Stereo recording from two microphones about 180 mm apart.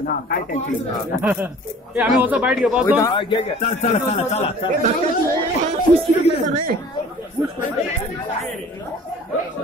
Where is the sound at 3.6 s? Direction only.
40° left (ahead or behind).